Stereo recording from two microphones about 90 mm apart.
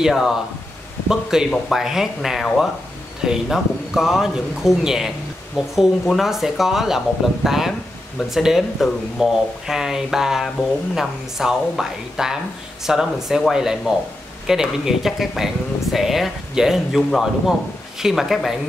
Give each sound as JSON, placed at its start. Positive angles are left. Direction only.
{"t": 0.0, "sound": "a man's voice", "side_deg": -5}